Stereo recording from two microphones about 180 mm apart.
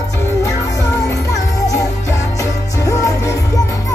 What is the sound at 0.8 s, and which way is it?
Music, 20° left (ahead or behind).